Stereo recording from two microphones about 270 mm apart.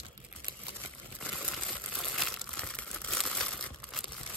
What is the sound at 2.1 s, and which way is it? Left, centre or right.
Crumpling, centre.